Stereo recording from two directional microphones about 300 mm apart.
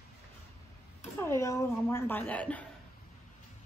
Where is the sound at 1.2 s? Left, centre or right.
Centre.